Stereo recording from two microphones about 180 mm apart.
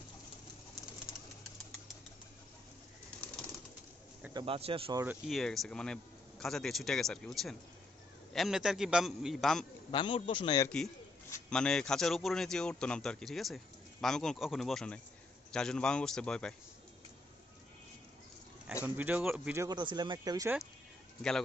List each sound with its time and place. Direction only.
4.3 s a man's voice: 25° right (ahead or behind)
5.2 s a man's voice: centre (ahead or behind)
9.8 s a man's voice: 30° left (ahead or behind)
11.5 s a man's voice: 5° left (ahead or behind)
18.9 s speech: 10° right (ahead or behind)
19.5 s speech: 20° right (ahead or behind)